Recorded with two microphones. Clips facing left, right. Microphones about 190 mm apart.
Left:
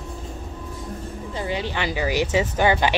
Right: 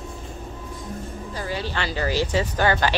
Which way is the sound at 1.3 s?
20° left (ahead or behind).